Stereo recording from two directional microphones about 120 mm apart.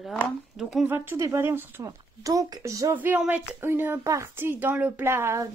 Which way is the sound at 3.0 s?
15° right (ahead or behind).